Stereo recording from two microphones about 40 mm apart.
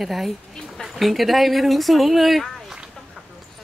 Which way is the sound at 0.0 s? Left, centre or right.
Centre.